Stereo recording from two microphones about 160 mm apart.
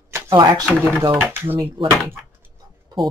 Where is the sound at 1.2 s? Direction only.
15° right (ahead or behind).